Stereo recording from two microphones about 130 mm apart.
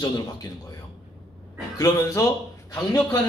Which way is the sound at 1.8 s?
25° left (ahead or behind).